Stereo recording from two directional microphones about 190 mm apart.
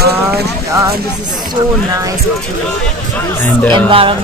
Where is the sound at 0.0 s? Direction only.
55° right (ahead or behind).